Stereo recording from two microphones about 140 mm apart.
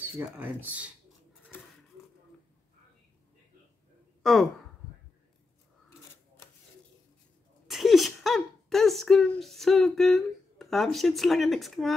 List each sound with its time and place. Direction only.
0.2 s speech: 10° right (ahead or behind)
4.2 s speech: centre (ahead or behind)
5.9 s scissors: 20° left (ahead or behind)
7.6 s a sound: centre (ahead or behind)